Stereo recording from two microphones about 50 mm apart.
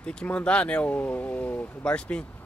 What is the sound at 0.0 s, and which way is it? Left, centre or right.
Speech, left.